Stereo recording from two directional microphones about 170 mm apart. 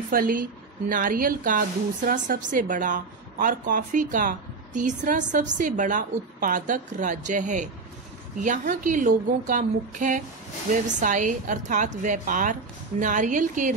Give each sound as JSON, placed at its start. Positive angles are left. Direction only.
{"t": 0.1, "sound": "a woman's voice", "side_deg": -55}